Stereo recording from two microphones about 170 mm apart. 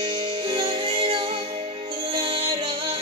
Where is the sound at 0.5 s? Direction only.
35° right (ahead or behind).